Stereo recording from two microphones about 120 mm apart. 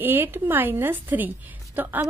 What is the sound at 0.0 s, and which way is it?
A woman's voice, 15° right (ahead or behind).